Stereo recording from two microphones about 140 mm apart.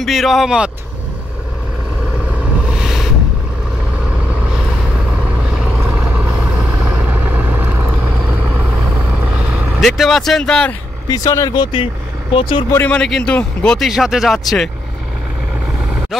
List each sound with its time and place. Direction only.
0.0 s a man's voice: centre (ahead or behind)
2.7 s a sound: 5° right (ahead or behind)
5.5 s vehicle: 10° right (ahead or behind)
9.8 s a man's voice: centre (ahead or behind)
11.1 s speech: 25° left (ahead or behind)
12.7 s a man's voice: 10° left (ahead or behind)